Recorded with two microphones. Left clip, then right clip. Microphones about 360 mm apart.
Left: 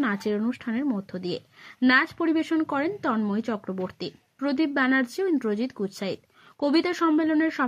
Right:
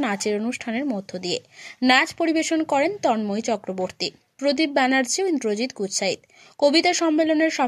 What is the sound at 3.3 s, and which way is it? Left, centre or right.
Speech, right.